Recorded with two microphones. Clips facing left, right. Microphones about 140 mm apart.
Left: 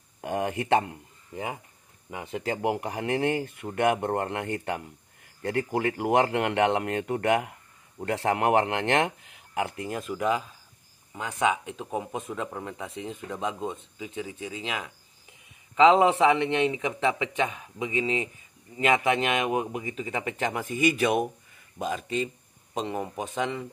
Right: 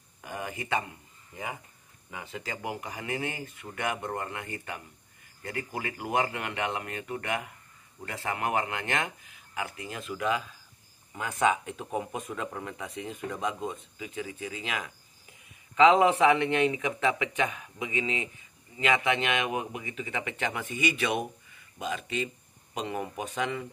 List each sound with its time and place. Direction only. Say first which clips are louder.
0.2 s speech: left 8 dB; 65° left (ahead or behind)
2.4 s speech: left 10 dB; 60° left (ahead or behind)
9.8 s speech: left 5 dB; 45° left (ahead or behind)
11.4 s speech: even; 15° left (ahead or behind); by 22.3 s 40° left (ahead or behind)
22.8 s speech: left 3 dB; 25° left (ahead or behind)